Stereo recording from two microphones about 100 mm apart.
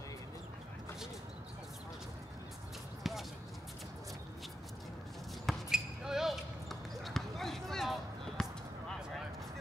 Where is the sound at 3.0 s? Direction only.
Centre (ahead or behind).